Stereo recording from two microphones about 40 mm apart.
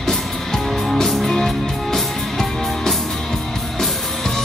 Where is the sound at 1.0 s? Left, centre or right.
Centre.